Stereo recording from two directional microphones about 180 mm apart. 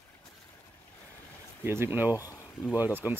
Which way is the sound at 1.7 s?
10° right (ahead or behind).